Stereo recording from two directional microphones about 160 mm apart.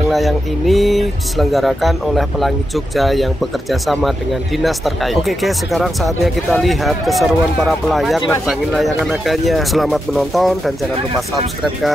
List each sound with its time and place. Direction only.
0.1 s speech: centre (ahead or behind)